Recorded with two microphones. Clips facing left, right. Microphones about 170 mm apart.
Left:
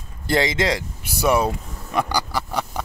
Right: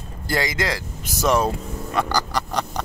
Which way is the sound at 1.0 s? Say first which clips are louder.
Even; 10° left (ahead or behind).